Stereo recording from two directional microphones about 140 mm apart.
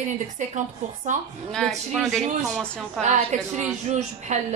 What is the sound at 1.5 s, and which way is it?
Speech, centre (ahead or behind).